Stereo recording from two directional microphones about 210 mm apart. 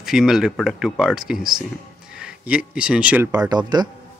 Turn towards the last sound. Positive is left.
turn(degrees=-20)  # may be behind; listen again after turning